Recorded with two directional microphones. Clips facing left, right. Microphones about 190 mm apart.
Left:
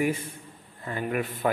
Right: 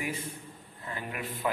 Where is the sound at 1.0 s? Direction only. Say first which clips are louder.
Left 8 dB; 55° left (ahead or behind).